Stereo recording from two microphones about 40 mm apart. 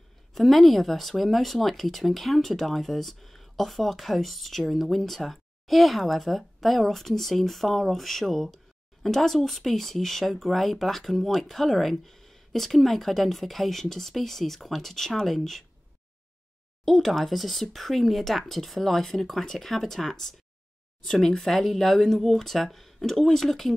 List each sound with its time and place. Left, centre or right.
0.3 s speech: centre
16.8 s speech: centre
19.7 s speech: centre